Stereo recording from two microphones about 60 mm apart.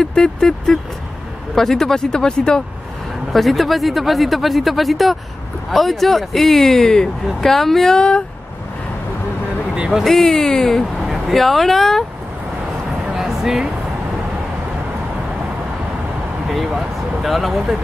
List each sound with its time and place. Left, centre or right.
0.0 s vehicle: centre
1.5 s speech: centre
3.3 s speech: centre
9.8 s speech: centre
10.0 s speech: centre
13.1 s music: centre
16.4 s speech: centre